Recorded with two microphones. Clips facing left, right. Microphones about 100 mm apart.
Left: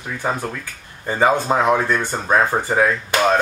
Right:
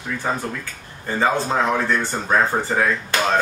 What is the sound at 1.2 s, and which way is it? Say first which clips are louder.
Speech: left 3 dB; 15° left (ahead or behind).